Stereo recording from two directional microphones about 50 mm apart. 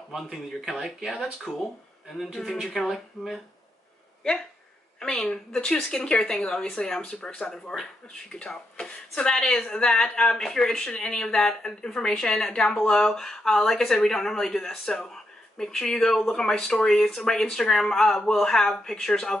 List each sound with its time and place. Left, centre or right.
0.1 s speech: centre
2.4 s speech: centre
5.0 s speech: centre
7.7 s speech: centre
8.3 s speech: centre